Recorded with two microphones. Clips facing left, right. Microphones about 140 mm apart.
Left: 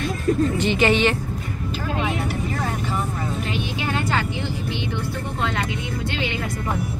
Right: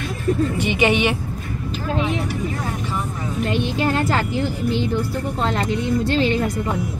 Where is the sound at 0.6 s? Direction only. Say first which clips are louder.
Even; 15° right (ahead or behind).